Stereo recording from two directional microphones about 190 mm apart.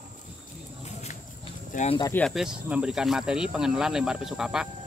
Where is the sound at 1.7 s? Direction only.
40° left (ahead or behind).